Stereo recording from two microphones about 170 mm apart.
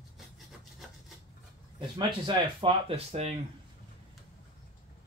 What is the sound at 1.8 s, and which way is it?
Speech, 25° right (ahead or behind).